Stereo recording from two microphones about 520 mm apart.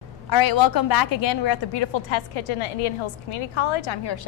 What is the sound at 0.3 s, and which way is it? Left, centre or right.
A woman's voice, left.